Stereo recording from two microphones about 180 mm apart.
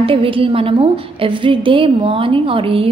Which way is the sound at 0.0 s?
30° right (ahead or behind).